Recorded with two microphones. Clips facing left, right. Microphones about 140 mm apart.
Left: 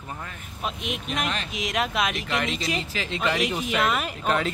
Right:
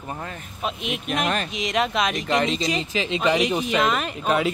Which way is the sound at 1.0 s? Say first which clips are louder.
Right 6 dB; 55° right (ahead or behind).